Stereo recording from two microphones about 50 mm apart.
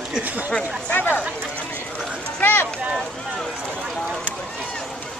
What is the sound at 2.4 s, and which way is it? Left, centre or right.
Speech, left.